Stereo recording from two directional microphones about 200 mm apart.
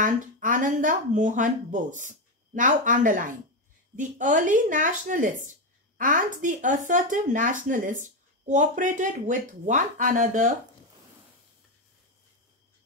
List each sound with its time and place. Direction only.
0.0 s speech: 40° right (ahead or behind)